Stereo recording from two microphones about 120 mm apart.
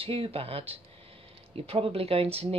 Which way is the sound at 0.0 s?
50° right (ahead or behind).